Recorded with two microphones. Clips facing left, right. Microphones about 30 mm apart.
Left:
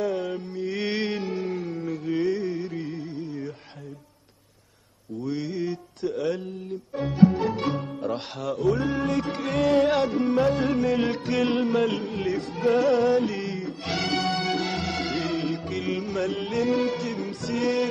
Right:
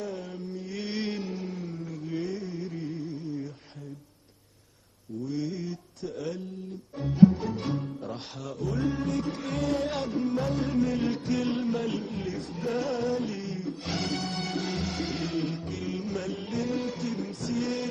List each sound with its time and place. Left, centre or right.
0.0 s mantra: left
5.2 s mantra: left
7.0 s speech: left
10.6 s music: left